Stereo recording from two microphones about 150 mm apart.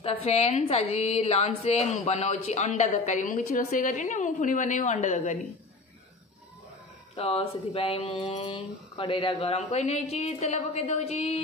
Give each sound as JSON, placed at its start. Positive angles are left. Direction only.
{"t": 0.0, "sound": "a woman's voice", "side_deg": 40}
{"t": 7.2, "sound": "speech", "side_deg": 40}